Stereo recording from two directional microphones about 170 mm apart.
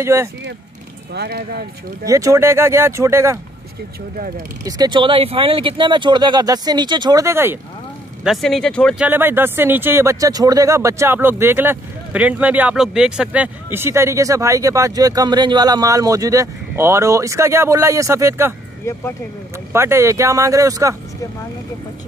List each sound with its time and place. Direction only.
0.0 s speech: 15° right (ahead or behind)
1.1 s speech: 70° right (ahead or behind)
2.0 s speech: 20° right (ahead or behind)
4.6 s speech: 25° right (ahead or behind)
8.2 s speech: centre (ahead or behind)
9.0 s speech: 10° right (ahead or behind)
18.9 s speech: 15° left (ahead or behind)
19.7 s speech: 15° right (ahead or behind)